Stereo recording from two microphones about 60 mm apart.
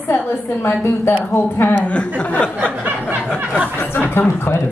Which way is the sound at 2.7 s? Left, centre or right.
Right.